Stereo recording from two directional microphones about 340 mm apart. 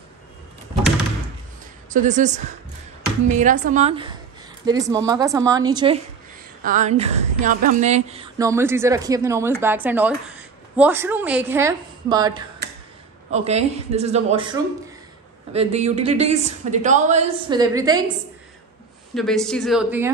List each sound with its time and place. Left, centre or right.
1.9 s a man's voice: right
19.1 s speech: centre